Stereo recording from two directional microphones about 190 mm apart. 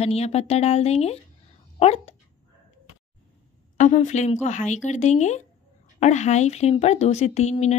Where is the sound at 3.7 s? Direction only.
40° left (ahead or behind).